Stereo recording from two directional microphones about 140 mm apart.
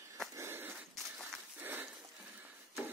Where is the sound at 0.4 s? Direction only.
15° right (ahead or behind).